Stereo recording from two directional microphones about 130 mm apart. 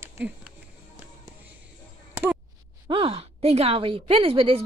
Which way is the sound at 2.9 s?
45° right (ahead or behind).